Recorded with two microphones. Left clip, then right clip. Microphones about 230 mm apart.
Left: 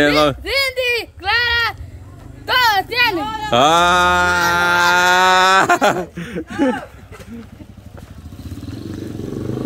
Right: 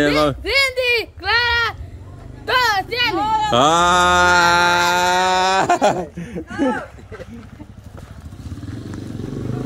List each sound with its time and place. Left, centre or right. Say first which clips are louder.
0.0 s bleat: left 3 dB; centre
2.4 s mantra: left 2 dB; centre
3.2 s speech: right 5 dB; right
3.4 s mantra: left 3 dB; centre